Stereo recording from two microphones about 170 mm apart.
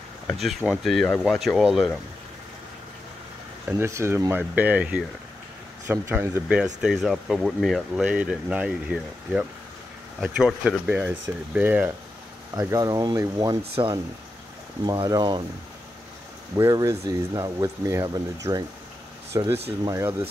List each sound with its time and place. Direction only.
0.4 s speech: 5° right (ahead or behind)
3.6 s speech: 15° right (ahead or behind)
16.5 s speech: 20° right (ahead or behind)